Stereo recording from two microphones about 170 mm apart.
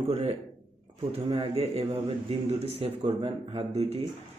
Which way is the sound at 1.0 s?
35° right (ahead or behind).